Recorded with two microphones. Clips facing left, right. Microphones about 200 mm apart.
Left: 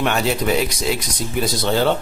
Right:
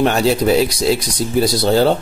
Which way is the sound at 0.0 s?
35° right (ahead or behind).